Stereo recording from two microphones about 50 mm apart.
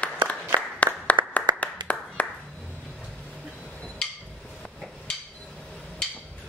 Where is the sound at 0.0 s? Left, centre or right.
Left.